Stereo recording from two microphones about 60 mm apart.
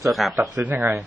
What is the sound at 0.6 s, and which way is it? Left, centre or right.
Speech, right.